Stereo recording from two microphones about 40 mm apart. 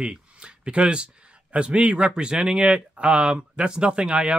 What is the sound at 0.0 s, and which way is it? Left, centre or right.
Speech, right.